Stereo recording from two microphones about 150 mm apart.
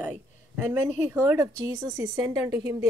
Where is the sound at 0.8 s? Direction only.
15° right (ahead or behind).